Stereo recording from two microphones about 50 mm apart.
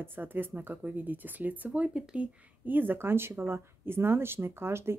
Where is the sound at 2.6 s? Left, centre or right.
Right.